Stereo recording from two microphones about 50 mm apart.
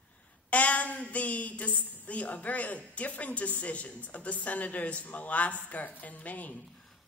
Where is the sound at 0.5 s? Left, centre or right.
Left.